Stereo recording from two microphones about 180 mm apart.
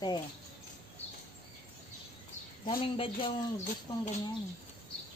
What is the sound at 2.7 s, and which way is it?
Speech, 30° left (ahead or behind).